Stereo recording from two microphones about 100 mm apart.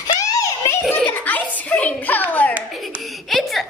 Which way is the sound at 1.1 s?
15° left (ahead or behind).